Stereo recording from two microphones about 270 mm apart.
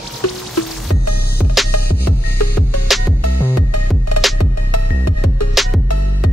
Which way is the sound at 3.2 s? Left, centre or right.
Left.